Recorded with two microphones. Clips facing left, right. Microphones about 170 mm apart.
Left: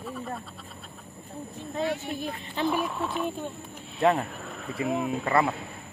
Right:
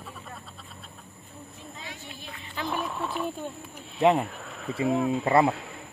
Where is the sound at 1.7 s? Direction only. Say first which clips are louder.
Left 17 dB; 55° left (ahead or behind).